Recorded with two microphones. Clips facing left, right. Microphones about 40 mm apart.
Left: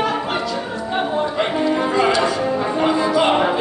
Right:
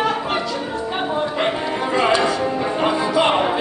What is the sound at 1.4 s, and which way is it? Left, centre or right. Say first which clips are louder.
Music: left 3 dB; centre.